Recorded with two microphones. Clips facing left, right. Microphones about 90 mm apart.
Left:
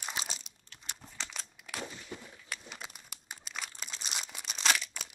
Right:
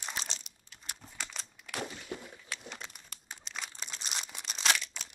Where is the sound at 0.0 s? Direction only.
5° left (ahead or behind).